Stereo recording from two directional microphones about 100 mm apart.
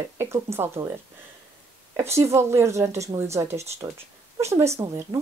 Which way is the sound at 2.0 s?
30° right (ahead or behind).